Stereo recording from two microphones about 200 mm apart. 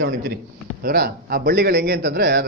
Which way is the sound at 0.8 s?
55° right (ahead or behind).